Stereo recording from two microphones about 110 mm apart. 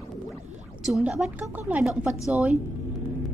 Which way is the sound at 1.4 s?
15° right (ahead or behind).